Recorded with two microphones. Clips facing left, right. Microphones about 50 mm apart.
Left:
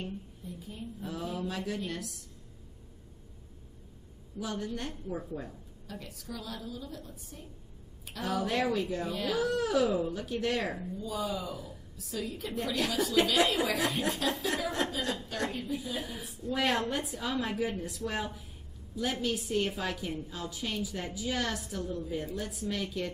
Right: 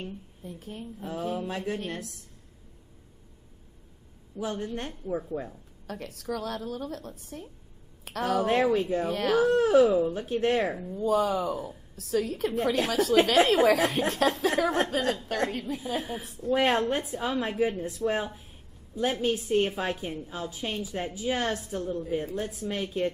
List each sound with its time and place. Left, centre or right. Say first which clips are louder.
0.4 s a woman's voice: right 3 dB; right
1.0 s a woman's voice: right 4 dB; right
4.4 s a woman's voice: right 4 dB; right
5.9 s a woman's voice: right 8 dB; right
8.7 s a woman's voice: right 6 dB; right
9.0 s a woman's voice: right 7 dB; right
9.5 s a woman's voice: right 8 dB; right
10.9 s a woman's voice: right 9 dB; right
12.5 s a woman's voice: right 5 dB; right